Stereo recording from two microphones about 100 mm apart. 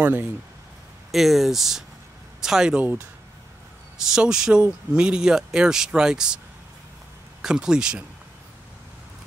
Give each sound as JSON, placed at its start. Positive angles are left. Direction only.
{"t": 0.0, "sound": "speech", "side_deg": -15}
{"t": 1.1, "sound": "speech", "side_deg": 0}
{"t": 4.1, "sound": "speech", "side_deg": -5}
{"t": 7.4, "sound": "speech", "side_deg": -5}